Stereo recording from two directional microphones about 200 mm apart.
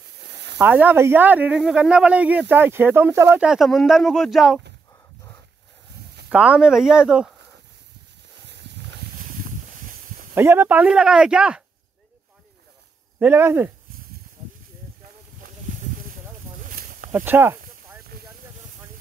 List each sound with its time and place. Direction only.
0.6 s speech: 10° right (ahead or behind)
6.3 s speech: 5° right (ahead or behind)
10.3 s speech: 10° right (ahead or behind)
13.2 s speech: 10° right (ahead or behind)
16.6 s a sound: 45° right (ahead or behind)
17.1 s speech: 10° right (ahead or behind)